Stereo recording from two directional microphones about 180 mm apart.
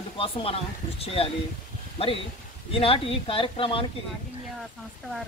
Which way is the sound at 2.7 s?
30° left (ahead or behind).